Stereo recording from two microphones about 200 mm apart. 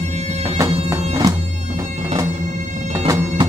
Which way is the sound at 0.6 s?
15° right (ahead or behind).